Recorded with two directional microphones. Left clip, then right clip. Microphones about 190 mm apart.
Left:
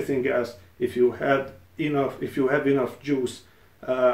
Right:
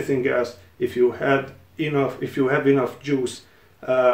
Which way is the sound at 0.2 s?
20° right (ahead or behind).